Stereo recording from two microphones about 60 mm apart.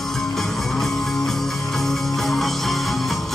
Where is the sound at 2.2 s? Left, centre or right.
Centre.